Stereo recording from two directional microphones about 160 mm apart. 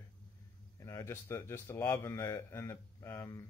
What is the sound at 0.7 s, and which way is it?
Speech, 20° left (ahead or behind).